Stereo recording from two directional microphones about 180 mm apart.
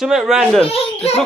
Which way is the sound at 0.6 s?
30° left (ahead or behind).